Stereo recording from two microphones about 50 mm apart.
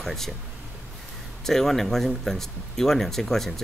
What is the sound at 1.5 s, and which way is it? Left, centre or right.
Speech, centre.